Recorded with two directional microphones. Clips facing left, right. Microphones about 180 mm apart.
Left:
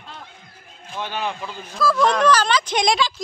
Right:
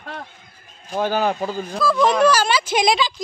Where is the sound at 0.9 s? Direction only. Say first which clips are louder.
Right 7 dB; 40° right (ahead or behind).